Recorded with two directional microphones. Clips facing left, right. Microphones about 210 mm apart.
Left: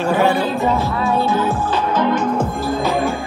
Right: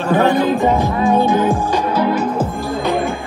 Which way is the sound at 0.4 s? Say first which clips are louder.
Right 4 dB; 15° right (ahead or behind).